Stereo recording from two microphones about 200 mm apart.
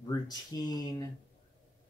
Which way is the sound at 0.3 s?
20° left (ahead or behind).